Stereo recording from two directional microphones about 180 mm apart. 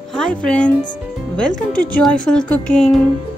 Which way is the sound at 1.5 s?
50° left (ahead or behind).